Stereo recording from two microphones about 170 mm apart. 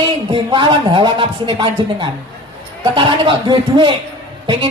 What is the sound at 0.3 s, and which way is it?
A woman's voice, 30° right (ahead or behind).